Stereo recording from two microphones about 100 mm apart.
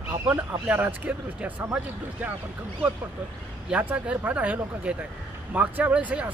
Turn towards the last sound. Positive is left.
turn(degrees=-15)  # may be behind; listen again after turning